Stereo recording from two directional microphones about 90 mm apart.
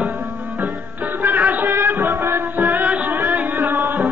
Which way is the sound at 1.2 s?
20° right (ahead or behind).